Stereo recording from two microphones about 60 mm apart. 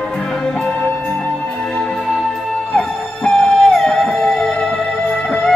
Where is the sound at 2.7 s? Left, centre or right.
Centre.